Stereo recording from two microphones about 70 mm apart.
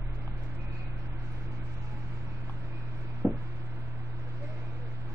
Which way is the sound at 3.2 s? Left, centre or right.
Right.